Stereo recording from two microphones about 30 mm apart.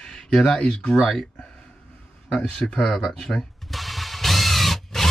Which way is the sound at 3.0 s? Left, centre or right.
Centre.